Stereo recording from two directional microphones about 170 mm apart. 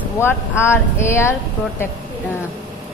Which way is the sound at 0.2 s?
15° left (ahead or behind).